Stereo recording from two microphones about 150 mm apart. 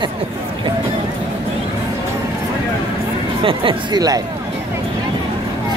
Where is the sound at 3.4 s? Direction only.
30° right (ahead or behind).